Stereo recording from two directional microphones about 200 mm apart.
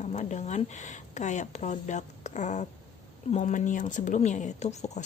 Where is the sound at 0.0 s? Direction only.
35° left (ahead or behind).